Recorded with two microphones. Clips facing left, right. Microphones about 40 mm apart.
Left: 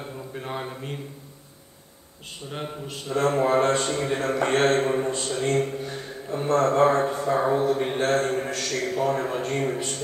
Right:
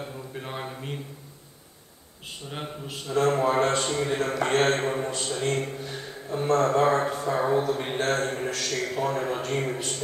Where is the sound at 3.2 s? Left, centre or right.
Left.